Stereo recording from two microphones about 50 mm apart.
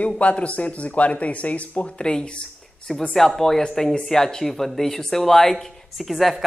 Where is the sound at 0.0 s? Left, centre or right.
Left.